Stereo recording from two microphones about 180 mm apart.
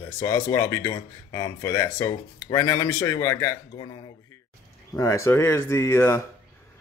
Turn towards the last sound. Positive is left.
turn(degrees=15)  # may be behind; listen again after turning